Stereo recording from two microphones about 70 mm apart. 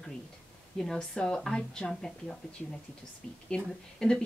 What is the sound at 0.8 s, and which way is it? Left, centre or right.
Speech, centre.